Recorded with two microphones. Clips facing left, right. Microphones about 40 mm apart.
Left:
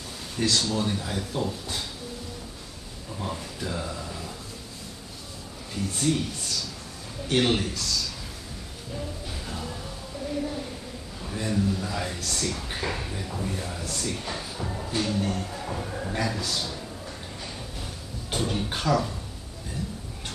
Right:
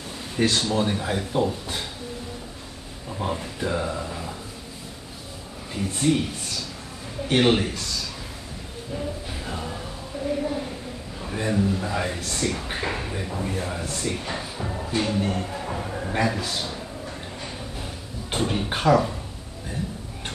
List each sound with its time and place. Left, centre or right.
0.4 s speech: right
3.1 s speech: right
5.8 s speech: right
8.9 s music: centre
11.1 s speech: right